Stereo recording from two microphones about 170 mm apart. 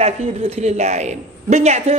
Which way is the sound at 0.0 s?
35° right (ahead or behind).